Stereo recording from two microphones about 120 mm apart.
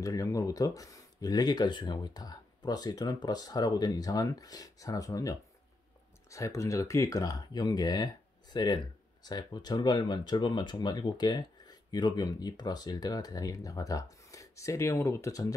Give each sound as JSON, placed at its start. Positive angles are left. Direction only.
{"t": 0.0, "sound": "speech", "side_deg": 30}